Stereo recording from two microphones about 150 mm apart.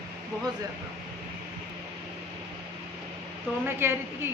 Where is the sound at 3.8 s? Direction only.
15° right (ahead or behind).